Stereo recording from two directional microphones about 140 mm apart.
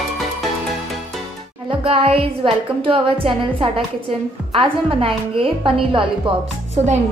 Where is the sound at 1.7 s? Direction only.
40° right (ahead or behind).